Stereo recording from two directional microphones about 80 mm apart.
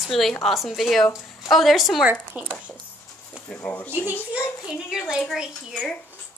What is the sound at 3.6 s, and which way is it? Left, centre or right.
Speech, left.